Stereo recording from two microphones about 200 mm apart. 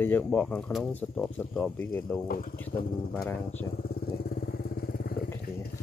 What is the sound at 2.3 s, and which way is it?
Speech, 45° left (ahead or behind).